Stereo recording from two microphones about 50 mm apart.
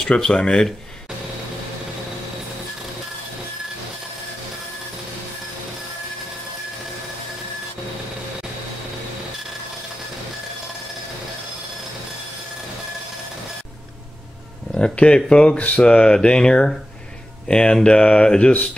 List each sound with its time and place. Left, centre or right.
0.0 s speech: centre
14.7 s speech: centre